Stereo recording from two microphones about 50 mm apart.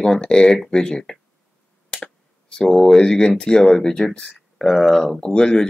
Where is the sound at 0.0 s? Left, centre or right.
Centre.